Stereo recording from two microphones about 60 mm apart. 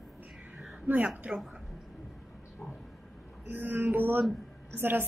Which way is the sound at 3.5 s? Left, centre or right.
Right.